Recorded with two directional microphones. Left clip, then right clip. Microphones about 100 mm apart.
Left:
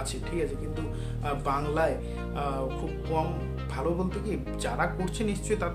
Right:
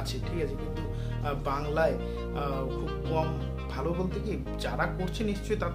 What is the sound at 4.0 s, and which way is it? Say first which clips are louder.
Speech: left 1 dB; 15° right (ahead or behind).